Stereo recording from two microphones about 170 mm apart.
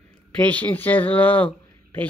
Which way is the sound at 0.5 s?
10° left (ahead or behind).